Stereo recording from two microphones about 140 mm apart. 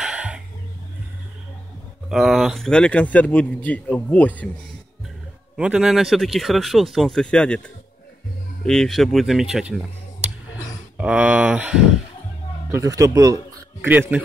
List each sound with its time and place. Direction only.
0.0 s music: 10° right (ahead or behind)
2.0 s a man's voice: 5° right (ahead or behind); by 4.5 s 10° left (ahead or behind)
5.6 s speech: 5° right (ahead or behind)
8.6 s speech: 5° left (ahead or behind)
11.0 s speech: 10° right (ahead or behind)
12.7 s speech: 25° right (ahead or behind)
13.7 s speech: 15° right (ahead or behind)